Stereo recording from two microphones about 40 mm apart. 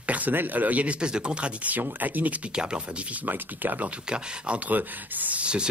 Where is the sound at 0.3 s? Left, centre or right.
Right.